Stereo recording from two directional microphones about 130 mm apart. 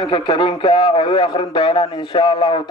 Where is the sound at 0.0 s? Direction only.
40° left (ahead or behind).